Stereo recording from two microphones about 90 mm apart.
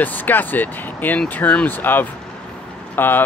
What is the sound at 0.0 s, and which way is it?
Speech, 20° left (ahead or behind).